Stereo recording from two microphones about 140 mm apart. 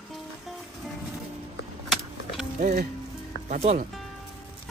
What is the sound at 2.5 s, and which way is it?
Speech, 90° right.